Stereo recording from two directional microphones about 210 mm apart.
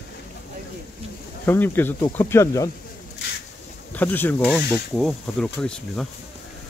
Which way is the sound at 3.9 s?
10° left (ahead or behind).